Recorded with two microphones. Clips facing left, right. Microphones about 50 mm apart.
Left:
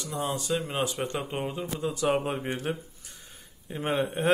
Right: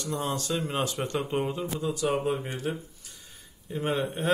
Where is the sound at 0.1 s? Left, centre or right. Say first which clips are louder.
Left 1 dB; centre.